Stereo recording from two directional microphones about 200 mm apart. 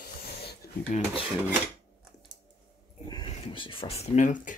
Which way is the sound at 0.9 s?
35° left (ahead or behind).